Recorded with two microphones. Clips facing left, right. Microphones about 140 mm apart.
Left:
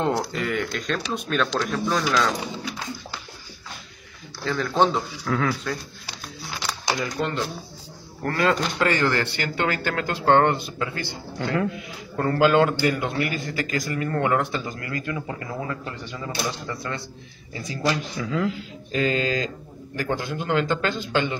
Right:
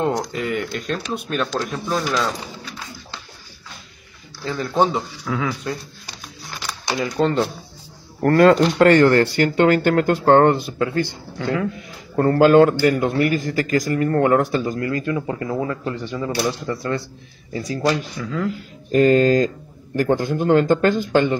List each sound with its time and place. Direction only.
0.3 s speech: 5° right (ahead or behind)
4.5 s speech: 10° right (ahead or behind)
6.9 s a man's voice: 30° right (ahead or behind)
8.2 s speech: 50° right (ahead or behind)
12.2 s a man's voice: 40° right (ahead or behind)
18.1 s speech: 5° left (ahead or behind)
18.9 s speech: 50° right (ahead or behind)